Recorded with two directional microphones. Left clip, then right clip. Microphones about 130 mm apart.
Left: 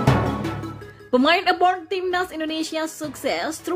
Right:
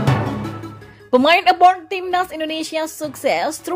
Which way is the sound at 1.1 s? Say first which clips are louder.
Right 5 dB; 25° right (ahead or behind).